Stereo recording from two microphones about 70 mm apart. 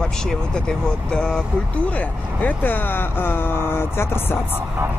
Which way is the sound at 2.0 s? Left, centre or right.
Left.